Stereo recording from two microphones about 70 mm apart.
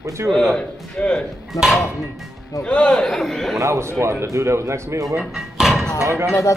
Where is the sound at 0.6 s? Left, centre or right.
Centre.